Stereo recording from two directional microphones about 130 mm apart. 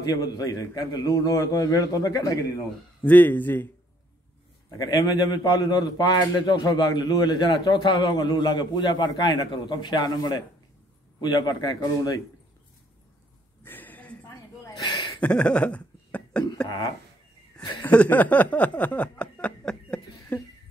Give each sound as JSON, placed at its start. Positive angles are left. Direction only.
{"t": 0.0, "sound": "a man's voice", "side_deg": 30}
{"t": 3.0, "sound": "speech", "side_deg": 15}
{"t": 4.6, "sound": "a man's voice", "side_deg": 30}
{"t": 13.7, "sound": "a sound", "side_deg": 15}
{"t": 15.1, "sound": "cough", "side_deg": 10}
{"t": 16.6, "sound": "speech", "side_deg": 35}
{"t": 17.8, "sound": "a sound", "side_deg": 10}